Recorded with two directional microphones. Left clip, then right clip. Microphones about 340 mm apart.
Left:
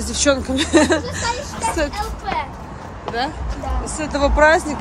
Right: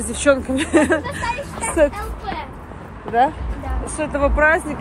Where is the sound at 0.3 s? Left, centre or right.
Centre.